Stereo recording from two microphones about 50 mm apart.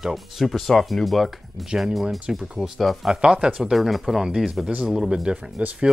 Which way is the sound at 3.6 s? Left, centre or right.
Centre.